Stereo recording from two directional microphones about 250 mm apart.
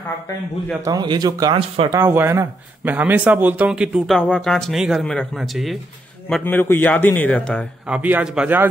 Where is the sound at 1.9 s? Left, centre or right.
Centre.